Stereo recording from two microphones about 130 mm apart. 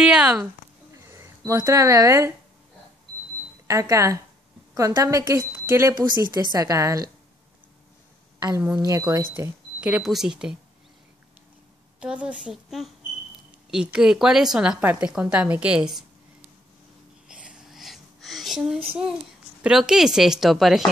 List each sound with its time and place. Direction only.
0.0 s a woman's voice: 10° right (ahead or behind)
0.9 s speech: 20° right (ahead or behind)
3.6 s a woman's voice: 25° right (ahead or behind)
8.4 s a woman's voice: 30° right (ahead or behind)
9.8 s a woman's voice: 5° right (ahead or behind)
12.0 s a woman's voice: 10° right (ahead or behind)
13.9 s a woman's voice: 5° right (ahead or behind)
17.3 s a sound: 5° right (ahead or behind)
19.6 s a woman's voice: 5° right (ahead or behind)